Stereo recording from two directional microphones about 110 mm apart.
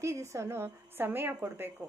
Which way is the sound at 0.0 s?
25° right (ahead or behind).